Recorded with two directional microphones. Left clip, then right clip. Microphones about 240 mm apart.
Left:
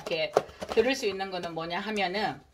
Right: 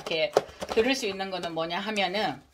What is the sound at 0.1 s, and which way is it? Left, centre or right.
Speech, right.